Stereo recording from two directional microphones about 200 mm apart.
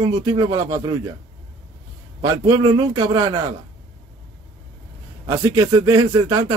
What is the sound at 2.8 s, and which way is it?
Speech, 20° right (ahead or behind).